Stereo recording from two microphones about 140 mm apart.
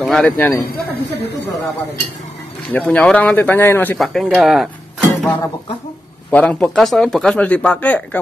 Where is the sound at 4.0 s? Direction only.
Centre (ahead or behind).